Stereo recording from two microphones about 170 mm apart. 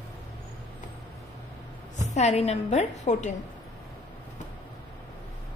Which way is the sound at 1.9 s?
45° left (ahead or behind).